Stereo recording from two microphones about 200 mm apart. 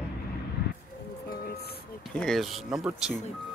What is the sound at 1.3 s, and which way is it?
Music, 50° left (ahead or behind).